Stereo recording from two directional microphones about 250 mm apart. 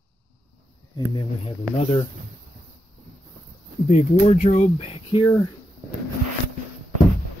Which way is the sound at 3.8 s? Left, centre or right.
Left.